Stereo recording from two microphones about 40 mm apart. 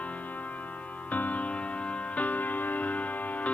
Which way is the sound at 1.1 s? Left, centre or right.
Left.